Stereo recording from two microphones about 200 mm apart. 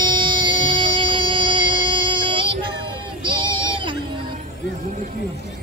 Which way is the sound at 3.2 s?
25° right (ahead or behind).